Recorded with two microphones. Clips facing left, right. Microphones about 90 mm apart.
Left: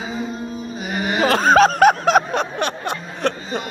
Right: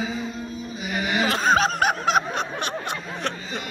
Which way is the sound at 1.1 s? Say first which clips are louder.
Left 7 dB; 60° left (ahead or behind).